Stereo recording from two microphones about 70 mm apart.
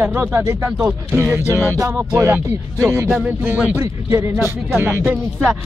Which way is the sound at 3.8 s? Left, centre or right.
Right.